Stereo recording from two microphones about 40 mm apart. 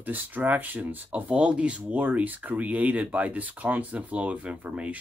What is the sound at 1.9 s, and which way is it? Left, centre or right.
Speech, right.